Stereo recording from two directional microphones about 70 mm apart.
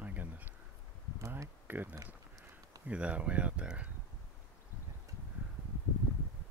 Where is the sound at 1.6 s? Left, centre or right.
Right.